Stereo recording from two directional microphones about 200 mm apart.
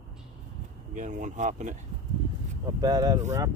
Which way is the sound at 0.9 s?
40° right (ahead or behind).